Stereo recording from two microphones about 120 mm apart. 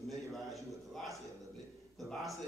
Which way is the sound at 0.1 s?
Centre (ahead or behind).